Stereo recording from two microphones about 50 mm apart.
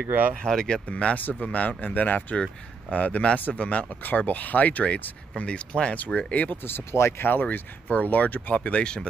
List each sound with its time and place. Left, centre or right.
0.1 s speech: right
0.4 s speech: centre
0.8 s speech: left
4.0 s speech: left
6.7 s speech: left
7.4 s speech: left